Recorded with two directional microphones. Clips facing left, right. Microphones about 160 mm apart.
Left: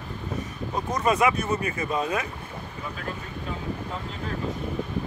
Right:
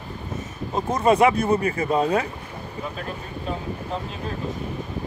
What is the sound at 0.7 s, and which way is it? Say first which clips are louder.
Speech: right 5 dB; 25° right (ahead or behind).